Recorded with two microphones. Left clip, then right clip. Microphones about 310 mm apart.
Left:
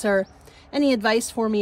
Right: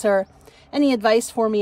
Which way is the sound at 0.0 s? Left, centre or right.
Centre.